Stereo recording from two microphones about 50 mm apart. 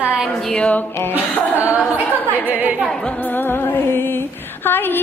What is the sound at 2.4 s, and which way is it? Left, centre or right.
Speech, right.